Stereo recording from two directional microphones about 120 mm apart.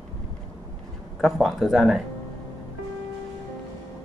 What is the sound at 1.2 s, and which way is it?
Speech, centre (ahead or behind).